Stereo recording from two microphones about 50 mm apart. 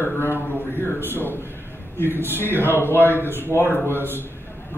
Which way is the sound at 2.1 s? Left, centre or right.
Left.